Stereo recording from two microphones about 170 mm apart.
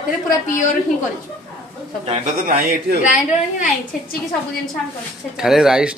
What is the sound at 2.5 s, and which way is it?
Speech, 55° right (ahead or behind).